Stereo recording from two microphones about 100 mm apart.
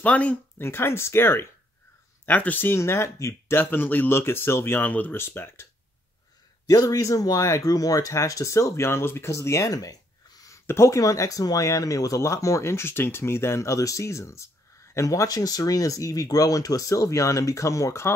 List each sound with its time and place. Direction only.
0.0 s speech: 15° left (ahead or behind)
6.7 s speech: 35° left (ahead or behind)